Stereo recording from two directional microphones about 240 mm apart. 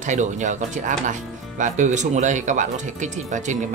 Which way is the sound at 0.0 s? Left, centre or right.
Right.